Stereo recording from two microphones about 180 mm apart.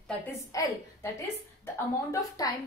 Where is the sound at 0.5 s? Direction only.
20° left (ahead or behind).